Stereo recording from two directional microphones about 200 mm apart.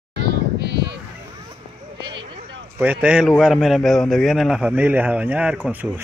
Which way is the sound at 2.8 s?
10° right (ahead or behind).